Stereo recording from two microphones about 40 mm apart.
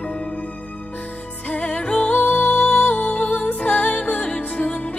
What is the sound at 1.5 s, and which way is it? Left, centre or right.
Music, left.